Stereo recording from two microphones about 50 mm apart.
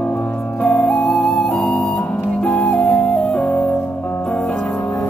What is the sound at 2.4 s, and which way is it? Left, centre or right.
Music, centre.